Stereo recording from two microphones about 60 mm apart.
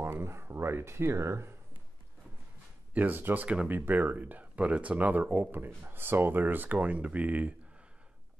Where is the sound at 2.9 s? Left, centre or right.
Right.